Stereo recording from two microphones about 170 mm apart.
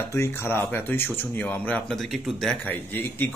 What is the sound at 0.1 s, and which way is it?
Speech, 15° left (ahead or behind).